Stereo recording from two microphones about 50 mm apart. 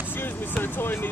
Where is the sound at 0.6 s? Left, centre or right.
Left.